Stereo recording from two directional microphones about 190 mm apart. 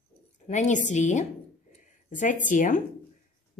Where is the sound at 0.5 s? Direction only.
40° left (ahead or behind).